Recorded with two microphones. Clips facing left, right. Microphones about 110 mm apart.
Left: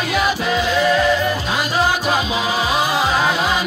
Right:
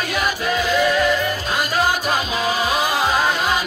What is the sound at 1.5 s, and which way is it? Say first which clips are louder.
Music: right 1 dB; 45° right (ahead or behind).